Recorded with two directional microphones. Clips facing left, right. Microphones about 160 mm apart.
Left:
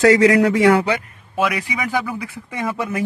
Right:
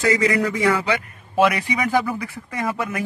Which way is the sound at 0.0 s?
85° left.